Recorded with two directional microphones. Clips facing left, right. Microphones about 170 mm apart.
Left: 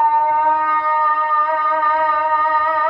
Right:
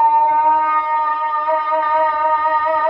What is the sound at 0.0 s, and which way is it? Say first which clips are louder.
Music: right 2 dB; 20° right (ahead or behind).